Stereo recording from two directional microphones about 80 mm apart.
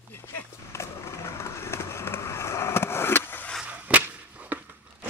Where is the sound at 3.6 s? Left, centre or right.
Centre.